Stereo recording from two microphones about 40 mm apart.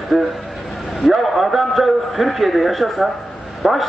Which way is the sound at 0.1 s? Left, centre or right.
Centre.